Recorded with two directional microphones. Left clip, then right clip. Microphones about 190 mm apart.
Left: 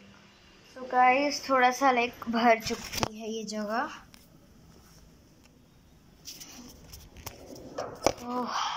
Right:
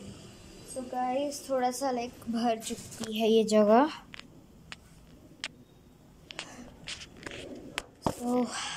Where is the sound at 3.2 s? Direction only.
40° right (ahead or behind).